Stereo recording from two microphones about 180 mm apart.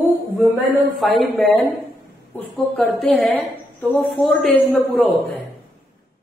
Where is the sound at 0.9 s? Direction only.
Centre (ahead or behind).